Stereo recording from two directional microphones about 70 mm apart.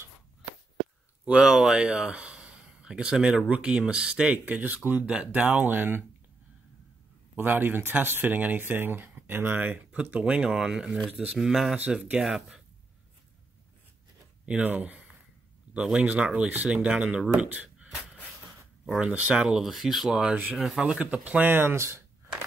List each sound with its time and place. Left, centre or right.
1.2 s speech: centre; by 6.0 s right
7.3 s speech: right
9.9 s speech: centre
11.7 s speech: centre
12.2 s speech: centre
14.4 s speech: centre
18.9 s speech: centre
19.4 s speech: centre
21.0 s speech: centre
21.5 s speech: right